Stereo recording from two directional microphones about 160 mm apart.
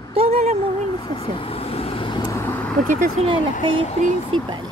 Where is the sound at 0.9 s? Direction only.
30° left (ahead or behind).